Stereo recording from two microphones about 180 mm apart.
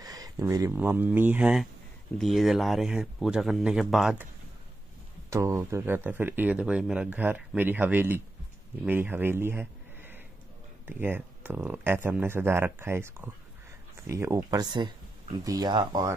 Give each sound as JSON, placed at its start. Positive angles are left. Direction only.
{"t": 0.0, "sound": "speech", "side_deg": -20}
{"t": 5.3, "sound": "speech", "side_deg": -15}